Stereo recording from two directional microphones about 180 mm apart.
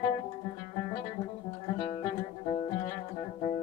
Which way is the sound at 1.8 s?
30° left (ahead or behind).